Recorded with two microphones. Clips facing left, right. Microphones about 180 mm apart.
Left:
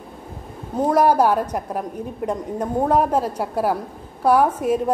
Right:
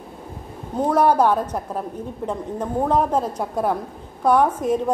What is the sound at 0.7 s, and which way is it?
A woman's voice, 10° left (ahead or behind).